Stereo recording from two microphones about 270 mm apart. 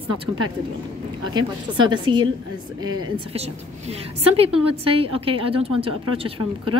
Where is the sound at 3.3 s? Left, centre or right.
Right.